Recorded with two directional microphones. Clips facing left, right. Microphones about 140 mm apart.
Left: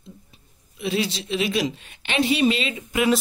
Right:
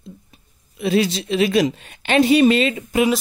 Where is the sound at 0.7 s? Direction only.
45° right (ahead or behind).